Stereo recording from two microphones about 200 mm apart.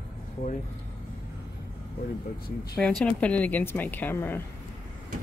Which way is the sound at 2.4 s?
50° left (ahead or behind).